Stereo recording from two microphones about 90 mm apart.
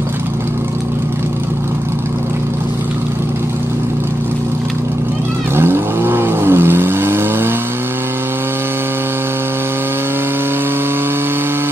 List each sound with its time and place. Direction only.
5.6 s vehicle: 25° right (ahead or behind)